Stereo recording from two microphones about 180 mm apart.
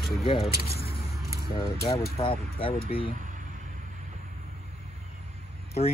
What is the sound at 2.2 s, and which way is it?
Speech, 25° left (ahead or behind).